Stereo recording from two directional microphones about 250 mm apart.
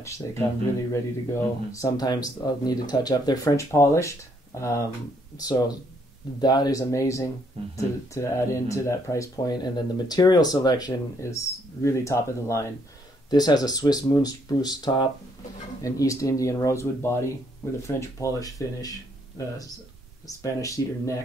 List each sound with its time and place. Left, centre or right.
0.0 s speech: centre